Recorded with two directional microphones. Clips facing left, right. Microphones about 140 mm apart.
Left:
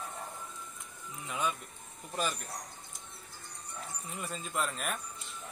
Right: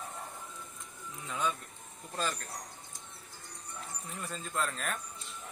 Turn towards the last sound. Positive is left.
turn(degrees=10)  # may be behind; listen again after turning